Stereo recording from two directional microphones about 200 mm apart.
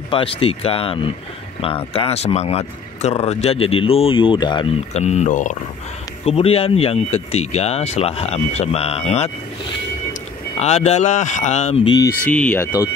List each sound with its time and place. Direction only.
0.1 s speech: 25° left (ahead or behind)
4.9 s speech: 35° left (ahead or behind)
10.6 s speech: 35° left (ahead or behind)
12.3 s speech: 10° left (ahead or behind)